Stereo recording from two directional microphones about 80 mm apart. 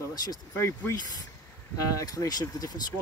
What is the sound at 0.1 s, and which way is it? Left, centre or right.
Speech, left.